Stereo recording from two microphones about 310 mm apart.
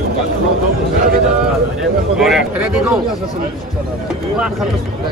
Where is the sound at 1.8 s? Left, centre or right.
Centre.